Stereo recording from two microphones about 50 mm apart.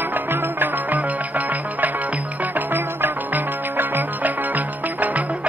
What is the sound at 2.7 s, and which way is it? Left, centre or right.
Music, right.